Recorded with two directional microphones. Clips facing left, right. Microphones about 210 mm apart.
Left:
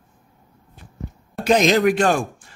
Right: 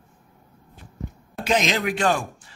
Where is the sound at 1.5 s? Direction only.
45° left (ahead or behind).